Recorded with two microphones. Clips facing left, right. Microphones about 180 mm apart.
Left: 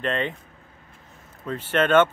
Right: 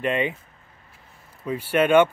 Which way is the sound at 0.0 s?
10° right (ahead or behind).